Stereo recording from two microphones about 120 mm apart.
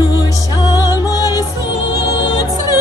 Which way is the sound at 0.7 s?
30° left (ahead or behind).